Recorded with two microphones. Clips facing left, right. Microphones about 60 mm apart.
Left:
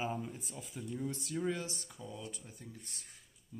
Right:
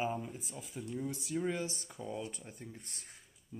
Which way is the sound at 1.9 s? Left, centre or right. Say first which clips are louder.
Right 5 dB; right.